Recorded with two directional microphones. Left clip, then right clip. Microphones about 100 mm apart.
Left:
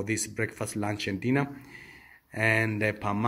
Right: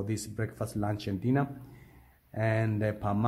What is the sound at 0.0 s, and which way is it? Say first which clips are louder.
Speech: left 6 dB; 10° right (ahead or behind).